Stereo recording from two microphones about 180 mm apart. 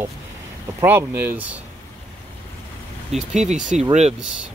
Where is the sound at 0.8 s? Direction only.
10° right (ahead or behind).